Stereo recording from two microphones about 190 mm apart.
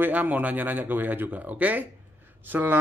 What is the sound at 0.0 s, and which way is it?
Speech, 10° right (ahead or behind).